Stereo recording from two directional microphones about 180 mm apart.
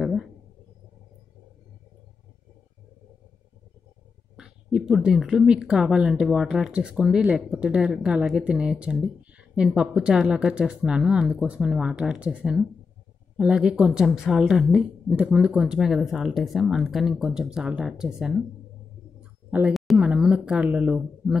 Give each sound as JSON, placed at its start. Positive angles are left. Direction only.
{"t": 4.4, "sound": "a woman's voice", "side_deg": -5}
{"t": 19.5, "sound": "speech", "side_deg": -5}